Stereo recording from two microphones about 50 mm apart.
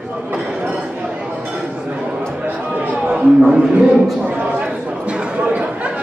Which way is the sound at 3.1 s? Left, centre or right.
Right.